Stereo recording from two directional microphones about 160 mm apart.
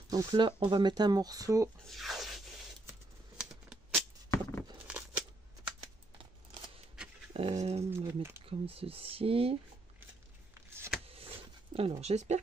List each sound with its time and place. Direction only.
0.1 s speech: 25° right (ahead or behind)
1.9 s a sound: centre (ahead or behind)
3.3 s typewriter: 5° right (ahead or behind)
4.3 s a sound: 15° left (ahead or behind)
4.9 s scissors: 5° right (ahead or behind)
7.3 s speech: 40° right (ahead or behind)
8.1 s speech: 15° right (ahead or behind)
8.5 s speech: 35° right (ahead or behind)
11.1 s a sound: 35° right (ahead or behind)